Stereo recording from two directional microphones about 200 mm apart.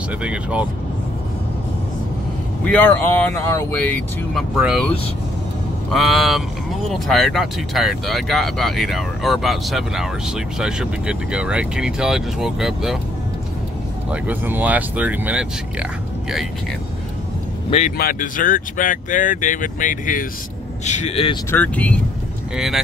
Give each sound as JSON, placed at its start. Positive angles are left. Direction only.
{"t": 0.2, "sound": "speech", "side_deg": -5}
{"t": 2.6, "sound": "speech", "side_deg": 5}
{"t": 14.1, "sound": "speech", "side_deg": -10}
{"t": 17.6, "sound": "speech", "side_deg": 35}
{"t": 17.9, "sound": "speech", "side_deg": 45}
{"t": 21.5, "sound": "speech", "side_deg": 10}